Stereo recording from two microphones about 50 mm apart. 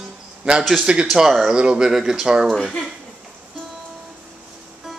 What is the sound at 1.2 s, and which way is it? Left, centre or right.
Speech, centre.